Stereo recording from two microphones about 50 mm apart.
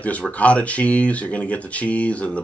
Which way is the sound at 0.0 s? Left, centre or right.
Left.